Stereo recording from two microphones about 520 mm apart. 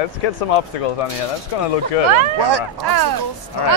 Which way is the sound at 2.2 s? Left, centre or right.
Right.